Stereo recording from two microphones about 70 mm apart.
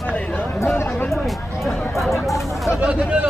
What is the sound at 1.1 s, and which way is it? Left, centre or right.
Chatter, centre.